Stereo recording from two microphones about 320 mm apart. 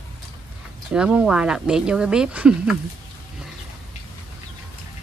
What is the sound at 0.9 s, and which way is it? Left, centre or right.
Speech, centre.